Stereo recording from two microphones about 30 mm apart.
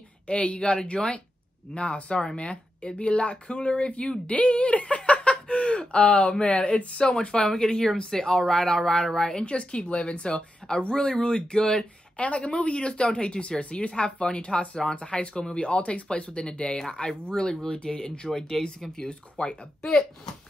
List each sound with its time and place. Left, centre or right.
0.3 s speech: left
0.9 s speech: left
4.3 s a sound: left
6.4 s speech: left
9.4 s speech: left
12.2 s speech: left
12.8 s speech: left
18.6 s speech: centre
18.9 s speech: left